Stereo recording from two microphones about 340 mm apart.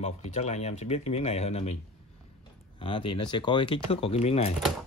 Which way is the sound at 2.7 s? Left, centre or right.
Centre.